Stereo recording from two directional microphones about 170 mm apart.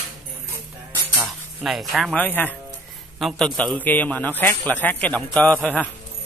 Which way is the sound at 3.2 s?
Centre (ahead or behind).